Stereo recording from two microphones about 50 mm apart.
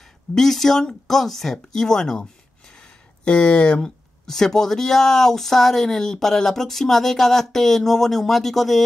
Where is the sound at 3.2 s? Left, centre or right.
Left.